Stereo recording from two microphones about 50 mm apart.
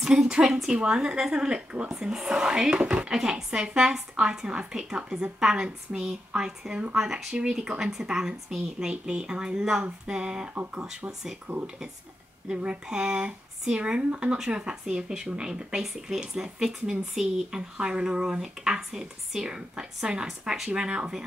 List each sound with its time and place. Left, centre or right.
0.0 s speech: centre
2.8 s speech: right
3.1 s speech: centre
7.0 s speech: centre
7.3 s speech: right
11.5 s speech: right
12.4 s speech: centre
17.6 s speech: right